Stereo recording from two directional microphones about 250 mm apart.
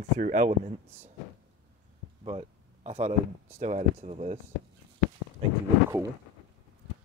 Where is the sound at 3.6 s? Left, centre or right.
Right.